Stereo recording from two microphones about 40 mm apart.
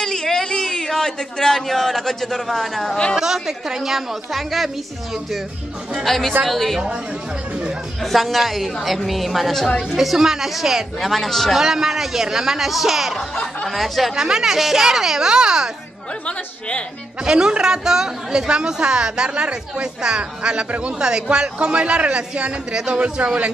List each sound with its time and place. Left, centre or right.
0.0 s speech: centre
3.2 s a woman's voice: centre
6.0 s a woman's voice: centre
8.0 s a woman's voice: centre
11.0 s a woman's voice: centre
11.5 s a woman's voice: centre
14.1 s speech: centre
16.3 s a woman's voice: left
17.2 s a woman's voice: right